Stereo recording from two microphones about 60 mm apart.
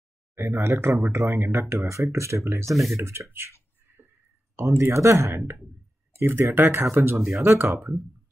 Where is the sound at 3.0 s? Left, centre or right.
Right.